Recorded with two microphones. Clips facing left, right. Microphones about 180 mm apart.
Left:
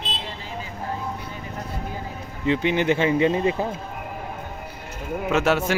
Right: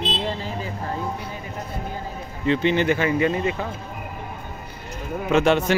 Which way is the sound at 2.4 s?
15° left (ahead or behind).